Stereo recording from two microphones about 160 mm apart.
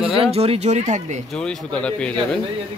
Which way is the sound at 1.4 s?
5° left (ahead or behind).